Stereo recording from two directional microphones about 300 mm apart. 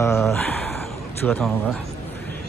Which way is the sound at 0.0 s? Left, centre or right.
Centre.